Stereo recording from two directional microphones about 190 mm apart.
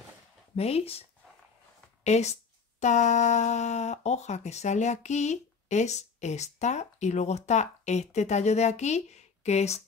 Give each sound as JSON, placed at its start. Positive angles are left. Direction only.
{"t": 0.6, "sound": "speech", "side_deg": 30}
{"t": 2.0, "sound": "speech", "side_deg": 35}